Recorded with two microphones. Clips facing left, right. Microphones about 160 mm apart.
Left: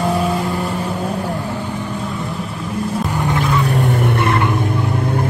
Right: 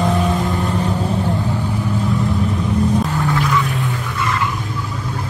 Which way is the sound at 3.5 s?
40° left (ahead or behind).